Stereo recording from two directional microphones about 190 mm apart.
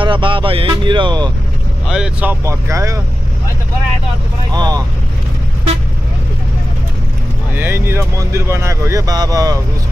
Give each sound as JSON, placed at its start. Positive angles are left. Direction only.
{"t": 0.0, "sound": "speech", "side_deg": -25}
{"t": 1.9, "sound": "speech", "side_deg": -5}
{"t": 4.5, "sound": "speech", "side_deg": -20}
{"t": 7.5, "sound": "speech", "side_deg": -10}